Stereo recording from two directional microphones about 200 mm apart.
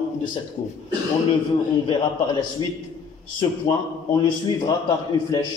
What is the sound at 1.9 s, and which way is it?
A man's voice, 25° left (ahead or behind).